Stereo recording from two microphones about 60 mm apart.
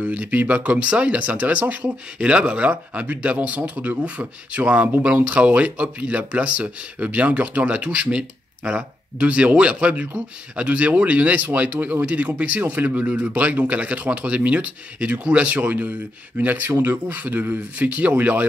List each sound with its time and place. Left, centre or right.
0.0 s speech: right